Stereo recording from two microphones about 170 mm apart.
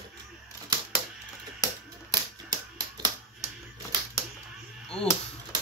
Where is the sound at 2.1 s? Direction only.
25° right (ahead or behind).